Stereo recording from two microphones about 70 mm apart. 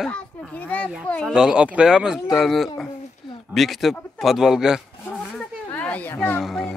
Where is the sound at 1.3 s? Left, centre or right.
Centre.